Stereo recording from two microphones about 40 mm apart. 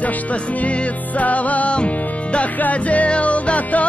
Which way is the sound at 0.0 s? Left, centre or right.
Left.